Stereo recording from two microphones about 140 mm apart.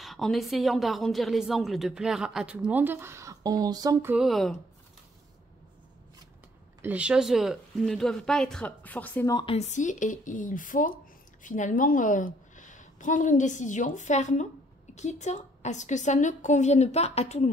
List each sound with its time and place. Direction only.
0.0 s a woman's voice: centre (ahead or behind); by 4.0 s 25° right (ahead or behind)
4.2 s a woman's voice: centre (ahead or behind)
6.8 s a woman's voice: 10° right (ahead or behind); by 9.3 s 10° left (ahead or behind)
9.3 s a woman's voice: 35° left (ahead or behind)
9.6 s a woman's voice: 60° left (ahead or behind)